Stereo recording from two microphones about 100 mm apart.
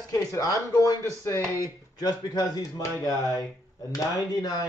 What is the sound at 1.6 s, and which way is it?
Speech, 40° left (ahead or behind).